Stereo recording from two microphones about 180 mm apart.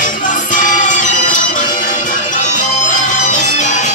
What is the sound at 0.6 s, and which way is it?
Music, 45° left (ahead or behind).